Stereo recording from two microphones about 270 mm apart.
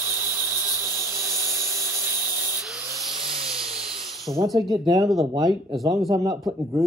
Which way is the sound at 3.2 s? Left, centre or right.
Centre.